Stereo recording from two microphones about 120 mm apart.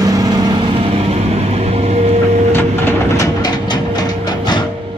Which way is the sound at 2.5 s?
20° left (ahead or behind).